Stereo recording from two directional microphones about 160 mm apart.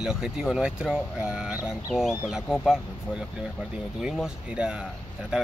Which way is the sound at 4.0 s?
5° right (ahead or behind).